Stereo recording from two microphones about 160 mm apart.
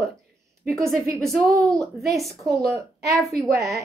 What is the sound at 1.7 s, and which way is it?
Speech, centre (ahead or behind).